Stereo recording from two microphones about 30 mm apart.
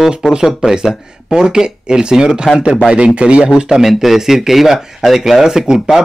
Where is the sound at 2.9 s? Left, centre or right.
Right.